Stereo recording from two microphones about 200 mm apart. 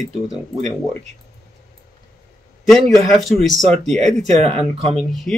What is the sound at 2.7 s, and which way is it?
Speech, centre (ahead or behind).